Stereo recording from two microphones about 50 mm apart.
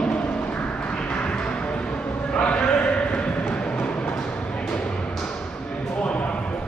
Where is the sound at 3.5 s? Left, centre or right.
Left.